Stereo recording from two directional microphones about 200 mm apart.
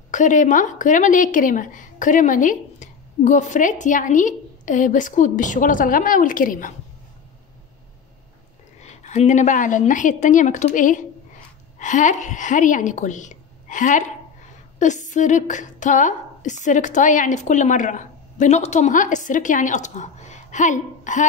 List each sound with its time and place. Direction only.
0.1 s a woman's voice: 40° left (ahead or behind)
8.7 s a woman's voice: 35° left (ahead or behind)